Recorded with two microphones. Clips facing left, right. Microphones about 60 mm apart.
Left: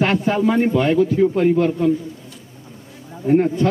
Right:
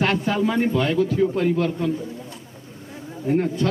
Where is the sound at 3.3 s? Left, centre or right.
Left.